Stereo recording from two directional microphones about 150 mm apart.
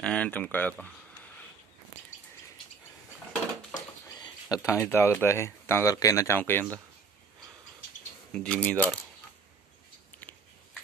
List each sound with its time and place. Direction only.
0.0 s speech: 5° left (ahead or behind)
3.7 s a sound: 25° left (ahead or behind)
4.6 s speech: 10° left (ahead or behind)
8.3 s speech: 5° left (ahead or behind)